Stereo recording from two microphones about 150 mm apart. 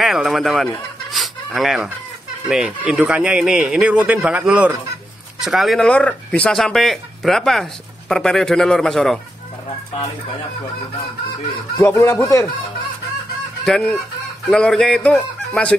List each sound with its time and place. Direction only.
0.0 s speech: centre (ahead or behind)
1.1 s chicken: centre (ahead or behind)
2.4 s speech: 10° right (ahead or behind)
11.8 s a man's voice: 15° left (ahead or behind)
13.7 s speech: 5° left (ahead or behind)